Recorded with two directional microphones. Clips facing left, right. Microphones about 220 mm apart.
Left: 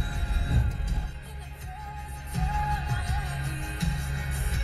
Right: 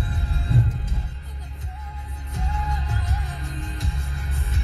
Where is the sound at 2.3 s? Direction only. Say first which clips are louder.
Even; 45° right (ahead or behind).